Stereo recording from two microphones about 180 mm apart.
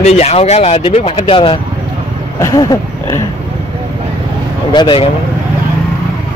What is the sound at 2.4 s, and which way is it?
Speech, 20° left (ahead or behind).